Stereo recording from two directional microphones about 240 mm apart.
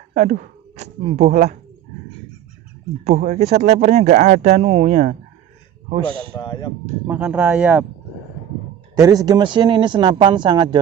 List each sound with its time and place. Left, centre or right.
0.1 s speech: right
3.1 s speech: right
6.3 s speech: centre
7.1 s speech: centre
8.9 s speech: centre